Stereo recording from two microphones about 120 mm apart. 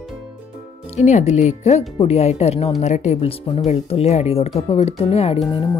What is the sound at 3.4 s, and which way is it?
Speech, 60° left (ahead or behind).